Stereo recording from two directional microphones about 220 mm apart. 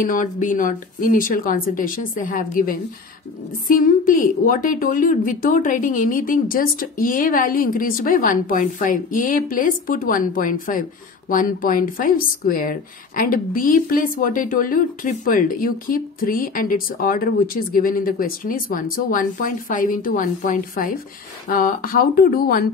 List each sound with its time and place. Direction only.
0.0 s a woman's voice: 35° left (ahead or behind)